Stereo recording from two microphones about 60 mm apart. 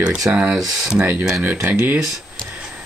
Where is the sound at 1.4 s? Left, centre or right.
Right.